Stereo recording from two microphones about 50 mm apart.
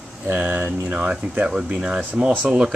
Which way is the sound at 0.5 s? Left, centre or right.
Right.